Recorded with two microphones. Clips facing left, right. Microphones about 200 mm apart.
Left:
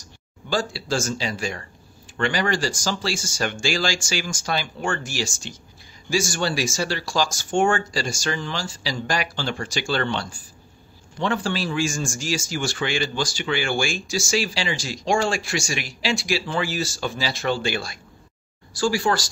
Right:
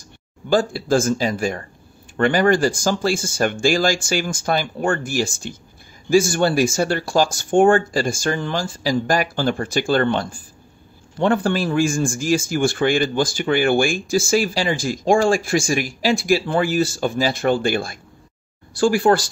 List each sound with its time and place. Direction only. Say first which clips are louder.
0.5 s a man's voice: right 7 dB; 50° right (ahead or behind)